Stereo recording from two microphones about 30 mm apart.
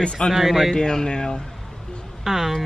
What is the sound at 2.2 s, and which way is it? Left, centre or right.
Speech, centre.